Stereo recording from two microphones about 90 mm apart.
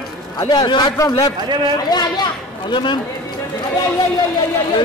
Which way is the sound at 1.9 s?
50° left (ahead or behind).